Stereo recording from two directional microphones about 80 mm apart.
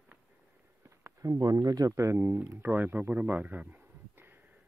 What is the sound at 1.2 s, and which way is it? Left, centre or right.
Speech, right.